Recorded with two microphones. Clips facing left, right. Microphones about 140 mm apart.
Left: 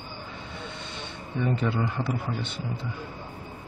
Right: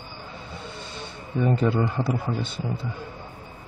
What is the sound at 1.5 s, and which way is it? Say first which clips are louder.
Speech: right 5 dB; 35° right (ahead or behind).